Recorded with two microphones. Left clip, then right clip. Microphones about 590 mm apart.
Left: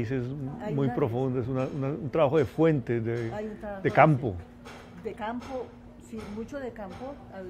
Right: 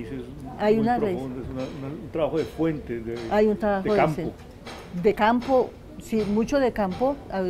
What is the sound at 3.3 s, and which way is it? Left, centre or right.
Speech, right.